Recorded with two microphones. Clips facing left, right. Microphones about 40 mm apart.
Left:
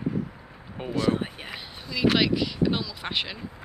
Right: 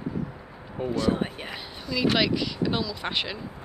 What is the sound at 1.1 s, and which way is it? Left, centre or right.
Speech, centre.